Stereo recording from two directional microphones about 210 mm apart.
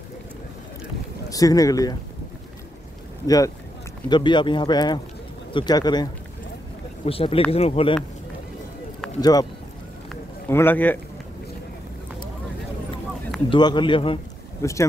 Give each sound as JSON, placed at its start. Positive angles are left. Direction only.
{"t": 1.3, "sound": "speech", "side_deg": 15}
{"t": 3.3, "sound": "speech", "side_deg": 15}
{"t": 7.1, "sound": "speech", "side_deg": 25}
{"t": 9.2, "sound": "speech", "side_deg": 20}
{"t": 10.5, "sound": "speech", "side_deg": 10}
{"t": 13.5, "sound": "speech", "side_deg": 20}
{"t": 14.6, "sound": "speech", "side_deg": 15}